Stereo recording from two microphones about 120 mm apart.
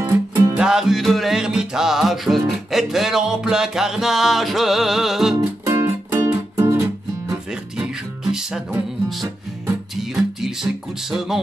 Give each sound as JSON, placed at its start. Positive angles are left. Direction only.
{"t": 0.0, "sound": "music", "side_deg": -25}
{"t": 0.6, "sound": "music", "side_deg": -5}
{"t": 5.7, "sound": "music", "side_deg": -25}
{"t": 7.7, "sound": "music", "side_deg": -5}
{"t": 9.9, "sound": "music", "side_deg": -5}